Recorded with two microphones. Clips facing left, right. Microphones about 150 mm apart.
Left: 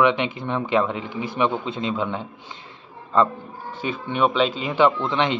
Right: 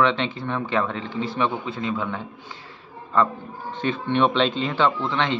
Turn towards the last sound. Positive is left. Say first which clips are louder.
# left 2 dB
turn(degrees=15)  # may be behind; listen again after turning